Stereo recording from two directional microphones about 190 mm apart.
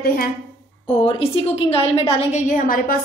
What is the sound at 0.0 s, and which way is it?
Speech, 50° left (ahead or behind).